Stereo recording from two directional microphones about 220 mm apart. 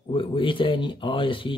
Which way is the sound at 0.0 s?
25° left (ahead or behind).